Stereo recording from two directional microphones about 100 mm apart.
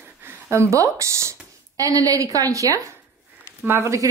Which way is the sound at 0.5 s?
30° right (ahead or behind).